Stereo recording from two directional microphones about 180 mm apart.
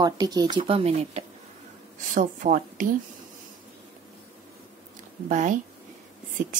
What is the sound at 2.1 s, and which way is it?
Speech, 50° right (ahead or behind).